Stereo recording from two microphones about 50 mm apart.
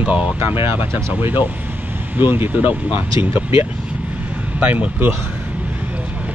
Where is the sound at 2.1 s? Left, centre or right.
Right.